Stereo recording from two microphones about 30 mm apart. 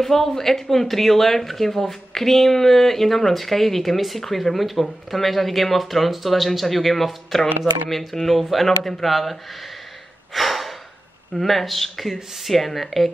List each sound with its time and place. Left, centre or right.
0.0 s speech: centre
9.1 s speech: centre
10.3 s gasp: centre
11.3 s speech: centre